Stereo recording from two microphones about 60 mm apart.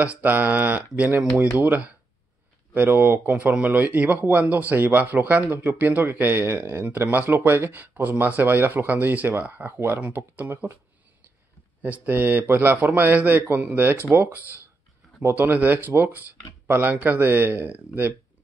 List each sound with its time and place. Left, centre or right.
0.0 s speech: right
11.8 s speech: right
15.4 s speech: right